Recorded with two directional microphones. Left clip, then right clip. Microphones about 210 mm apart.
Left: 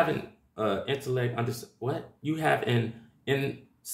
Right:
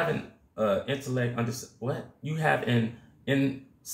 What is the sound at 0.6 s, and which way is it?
Speech, 45° left (ahead or behind).